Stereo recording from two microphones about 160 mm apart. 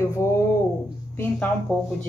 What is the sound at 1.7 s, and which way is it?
Speech, 10° left (ahead or behind).